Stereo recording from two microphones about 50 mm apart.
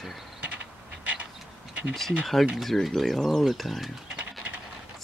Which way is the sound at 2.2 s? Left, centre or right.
Centre.